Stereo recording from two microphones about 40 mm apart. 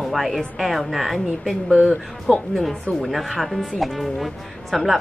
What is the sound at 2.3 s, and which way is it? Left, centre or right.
Speech, centre.